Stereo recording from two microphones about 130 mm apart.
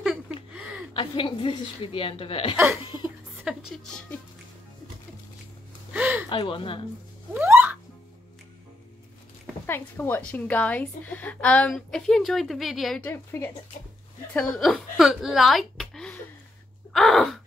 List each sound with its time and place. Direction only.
0.9 s a woman's voice: 40° left (ahead or behind)
2.5 s speech: 20° right (ahead or behind)
3.7 s speech: 5° left (ahead or behind)
5.9 s a sound: 10° right (ahead or behind)
6.2 s speech: 40° left (ahead or behind)
7.3 s music: 15° right (ahead or behind)
9.7 s a woman's voice: 15° left (ahead or behind); by 13.0 s centre (ahead or behind)
13.0 s a woman's voice: 20° left (ahead or behind)
14.3 s speech: 5° left (ahead or behind)
16.9 s gasp: centre (ahead or behind)